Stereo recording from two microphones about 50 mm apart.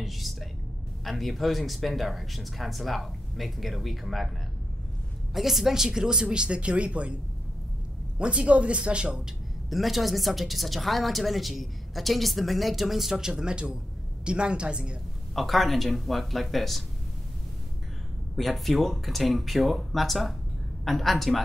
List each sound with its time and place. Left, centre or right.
0.0 s music: centre
1.0 s a woman's voice: centre
5.3 s speech: centre; by 7.2 s right
8.2 s speech: right
9.7 s a woman's voice: centre; by 15.0 s right
15.3 s a woman's voice: centre
18.3 s a woman's voice: centre